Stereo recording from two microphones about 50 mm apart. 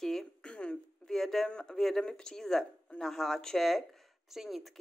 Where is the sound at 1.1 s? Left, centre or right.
Centre.